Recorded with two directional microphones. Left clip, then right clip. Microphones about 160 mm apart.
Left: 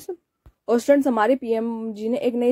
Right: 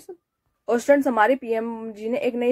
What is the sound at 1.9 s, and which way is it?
Speech, 55° left (ahead or behind).